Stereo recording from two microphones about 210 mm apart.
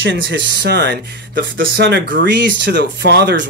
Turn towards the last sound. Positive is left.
turn(degrees=-55)  # may be behind; listen again after turning